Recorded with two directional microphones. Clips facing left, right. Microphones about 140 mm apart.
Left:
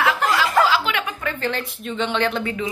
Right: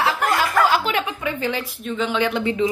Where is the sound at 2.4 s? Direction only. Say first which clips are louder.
Right 6 dB; 25° right (ahead or behind).